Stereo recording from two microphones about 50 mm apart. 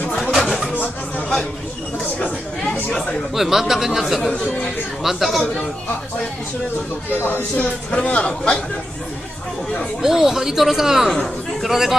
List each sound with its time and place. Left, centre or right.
0.5 s a sound: centre
3.3 s speech: centre
7.2 s speech: left
7.5 s a man's voice: left
10.0 s speech: centre